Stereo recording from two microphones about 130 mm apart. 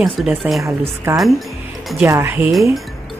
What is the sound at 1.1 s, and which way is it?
Speech, 20° right (ahead or behind).